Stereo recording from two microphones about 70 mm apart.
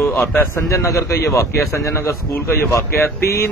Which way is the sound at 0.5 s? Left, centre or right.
Left.